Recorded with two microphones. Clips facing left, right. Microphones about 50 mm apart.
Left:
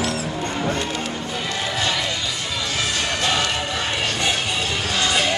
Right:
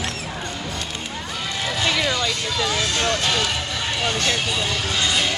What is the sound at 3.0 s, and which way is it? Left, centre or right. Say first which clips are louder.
Music: left 1 dB; centre.